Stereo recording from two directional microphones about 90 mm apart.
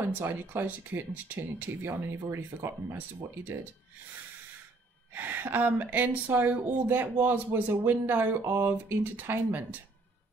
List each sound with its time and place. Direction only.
0.0 s speech: 25° right (ahead or behind)
1.9 s speech: 35° right (ahead or behind)
5.1 s speech: 20° right (ahead or behind)